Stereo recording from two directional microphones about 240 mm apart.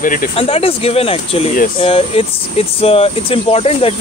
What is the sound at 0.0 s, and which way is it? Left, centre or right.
Speech, left.